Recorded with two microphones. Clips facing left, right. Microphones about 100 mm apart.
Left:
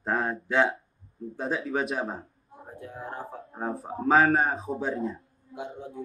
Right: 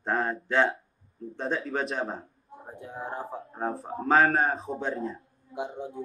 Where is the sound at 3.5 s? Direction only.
Centre (ahead or behind).